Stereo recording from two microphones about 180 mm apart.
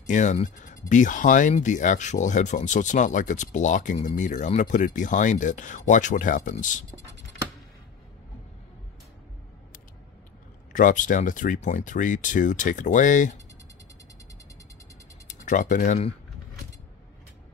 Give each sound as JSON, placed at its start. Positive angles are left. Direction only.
{"t": 0.0, "sound": "speech", "side_deg": 45}
{"t": 10.7, "sound": "speech", "side_deg": 45}
{"t": 15.2, "sound": "speech", "side_deg": 45}